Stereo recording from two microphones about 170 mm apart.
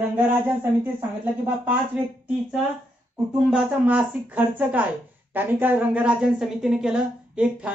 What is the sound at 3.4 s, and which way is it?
A woman's voice, 5° right (ahead or behind).